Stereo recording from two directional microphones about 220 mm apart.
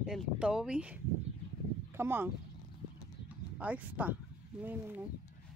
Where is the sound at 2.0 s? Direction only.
10° right (ahead or behind).